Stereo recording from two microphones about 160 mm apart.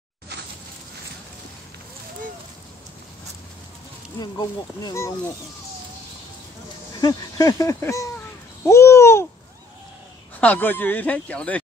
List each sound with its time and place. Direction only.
4.2 s speech: 25° left (ahead or behind)
6.9 s speech: 25° left (ahead or behind)
10.4 s speech: 10° left (ahead or behind)